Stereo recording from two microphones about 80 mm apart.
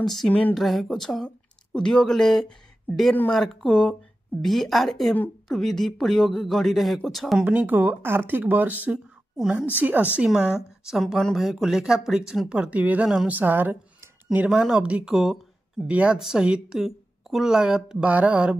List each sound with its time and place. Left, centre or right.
0.0 s speech: centre
0.3 s a woman's voice: centre
0.6 s a woman's voice: centre
7.4 s speech: right
9.4 s a woman's voice: centre
9.8 s a woman's voice: right
10.9 s a woman's voice: centre